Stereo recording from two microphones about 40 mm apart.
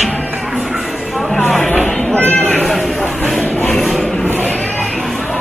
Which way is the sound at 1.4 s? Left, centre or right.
Left.